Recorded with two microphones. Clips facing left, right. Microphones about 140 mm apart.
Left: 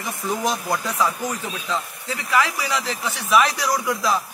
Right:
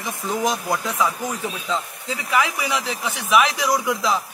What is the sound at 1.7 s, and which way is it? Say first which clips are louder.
A man's voice: left 1 dB; 15° right (ahead or behind).